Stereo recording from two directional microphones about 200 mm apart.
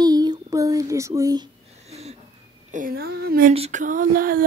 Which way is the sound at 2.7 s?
45° right (ahead or behind).